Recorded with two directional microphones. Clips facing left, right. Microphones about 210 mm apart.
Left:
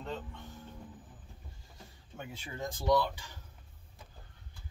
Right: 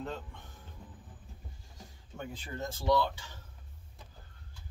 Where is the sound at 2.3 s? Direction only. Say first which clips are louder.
Left 1 dB; 15° left (ahead or behind).